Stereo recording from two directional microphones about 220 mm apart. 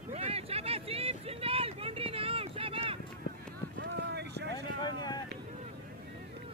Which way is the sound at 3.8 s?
50° right (ahead or behind).